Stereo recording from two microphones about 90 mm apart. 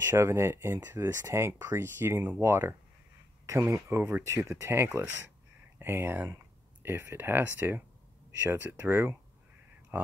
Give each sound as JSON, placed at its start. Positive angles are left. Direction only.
{"t": 0.0, "sound": "speech", "side_deg": -30}